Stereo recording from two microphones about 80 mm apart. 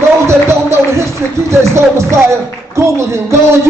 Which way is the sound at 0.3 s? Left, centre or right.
Right.